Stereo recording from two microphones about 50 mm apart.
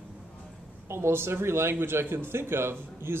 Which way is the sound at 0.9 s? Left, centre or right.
Right.